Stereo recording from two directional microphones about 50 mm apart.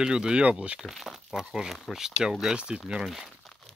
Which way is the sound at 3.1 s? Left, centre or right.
Centre.